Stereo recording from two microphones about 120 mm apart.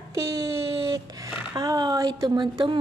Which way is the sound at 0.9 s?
30° right (ahead or behind).